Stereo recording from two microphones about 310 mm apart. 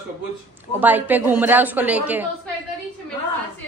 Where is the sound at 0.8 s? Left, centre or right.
Centre.